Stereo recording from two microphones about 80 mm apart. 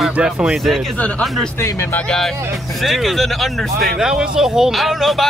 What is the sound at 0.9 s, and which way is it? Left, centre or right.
Speech, centre.